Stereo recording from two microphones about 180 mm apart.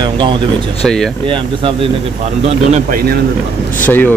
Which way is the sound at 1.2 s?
30° right (ahead or behind).